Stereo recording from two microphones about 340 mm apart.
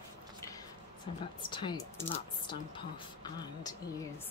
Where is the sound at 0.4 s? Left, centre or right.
Centre.